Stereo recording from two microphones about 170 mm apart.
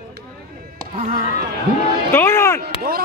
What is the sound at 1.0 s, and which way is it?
Speech, 50° right (ahead or behind).